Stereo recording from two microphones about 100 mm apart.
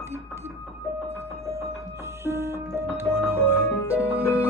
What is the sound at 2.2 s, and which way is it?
Music, 25° right (ahead or behind).